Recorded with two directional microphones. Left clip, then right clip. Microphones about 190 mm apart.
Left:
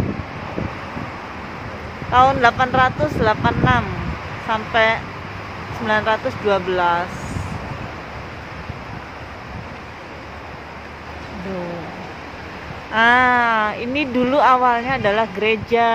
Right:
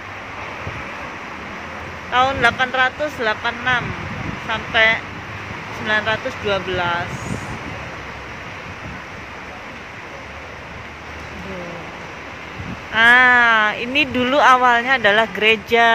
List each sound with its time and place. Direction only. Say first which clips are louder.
2.1 s speech: left 2 dB; 25° left (ahead or behind)
12.9 s speech: right 3 dB; 15° left (ahead or behind)